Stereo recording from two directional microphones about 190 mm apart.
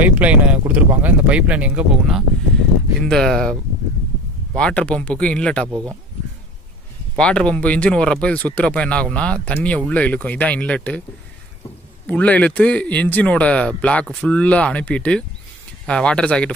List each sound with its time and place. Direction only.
0.2 s speech: 5° right (ahead or behind)
4.6 s speech: 5° left (ahead or behind)
5.7 s speech: 15° right (ahead or behind)
7.2 s speech: 5° left (ahead or behind)
12.1 s speech: 5° left (ahead or behind)